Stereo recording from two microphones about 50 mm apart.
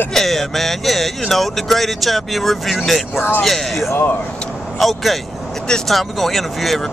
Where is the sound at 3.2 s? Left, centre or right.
Left.